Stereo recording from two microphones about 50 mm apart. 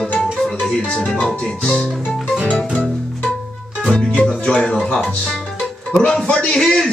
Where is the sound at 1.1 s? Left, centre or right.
Centre.